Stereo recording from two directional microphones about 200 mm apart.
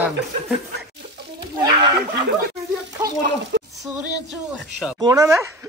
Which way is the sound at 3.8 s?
5° right (ahead or behind).